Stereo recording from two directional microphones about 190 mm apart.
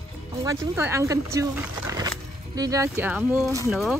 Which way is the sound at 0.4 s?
15° right (ahead or behind).